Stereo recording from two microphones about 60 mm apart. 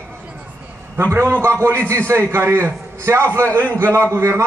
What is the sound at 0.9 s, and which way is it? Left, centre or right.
A man's voice, right.